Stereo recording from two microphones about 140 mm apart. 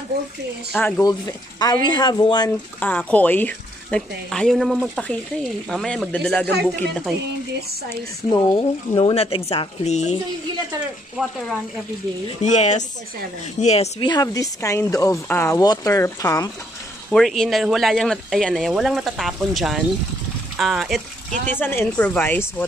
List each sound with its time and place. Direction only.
0.7 s speech: 15° left (ahead or behind)
1.0 s speech: 30° left (ahead or behind)
2.8 s speech: 10° left (ahead or behind)
8.5 s speech: 40° left (ahead or behind)
12.4 s speech: 55° left (ahead or behind)
13.9 s speech: 30° left (ahead or behind)
17.1 s speech: centre (ahead or behind)
21.5 s speech: 15° left (ahead or behind)